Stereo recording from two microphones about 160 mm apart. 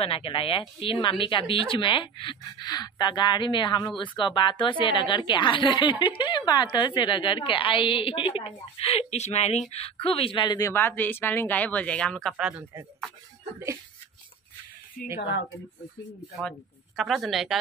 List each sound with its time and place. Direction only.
0.0 s speech: 35° left (ahead or behind)
10.7 s speech: 15° left (ahead or behind); by 12.6 s 5° right (ahead or behind)
15.1 s speech: 90° left
16.3 s speech: centre (ahead or behind)